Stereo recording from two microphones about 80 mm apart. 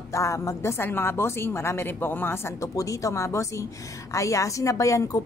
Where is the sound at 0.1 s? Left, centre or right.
Left.